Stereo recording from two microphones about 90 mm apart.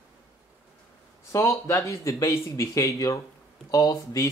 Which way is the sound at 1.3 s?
35° left (ahead or behind).